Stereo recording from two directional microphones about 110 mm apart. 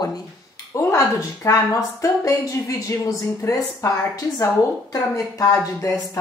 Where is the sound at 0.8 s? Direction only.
25° left (ahead or behind).